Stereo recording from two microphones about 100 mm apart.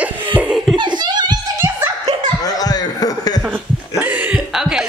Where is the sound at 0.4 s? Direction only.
10° right (ahead or behind).